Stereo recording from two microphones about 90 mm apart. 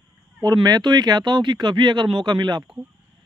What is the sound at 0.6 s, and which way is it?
Speech, 50° right (ahead or behind).